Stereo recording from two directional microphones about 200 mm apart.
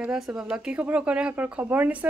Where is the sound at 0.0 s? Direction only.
5° right (ahead or behind).